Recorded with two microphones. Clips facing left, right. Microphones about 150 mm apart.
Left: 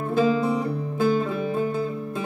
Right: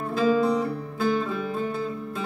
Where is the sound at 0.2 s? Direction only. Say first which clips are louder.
Right 1 dB; 15° left (ahead or behind).